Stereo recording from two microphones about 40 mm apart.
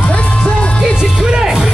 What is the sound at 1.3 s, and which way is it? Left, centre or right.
Music, centre.